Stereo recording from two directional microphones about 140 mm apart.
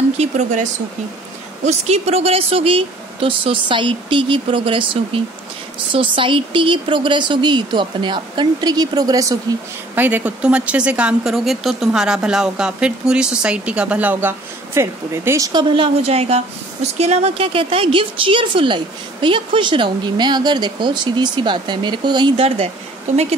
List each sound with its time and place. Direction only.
0.2 s speech: 60° right (ahead or behind); by 9.6 s 25° right (ahead or behind)
9.9 s speech: 15° right (ahead or behind)
15.7 s a woman's voice: 40° right (ahead or behind)